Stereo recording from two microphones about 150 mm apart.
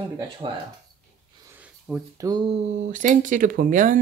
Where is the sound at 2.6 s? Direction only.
55° right (ahead or behind).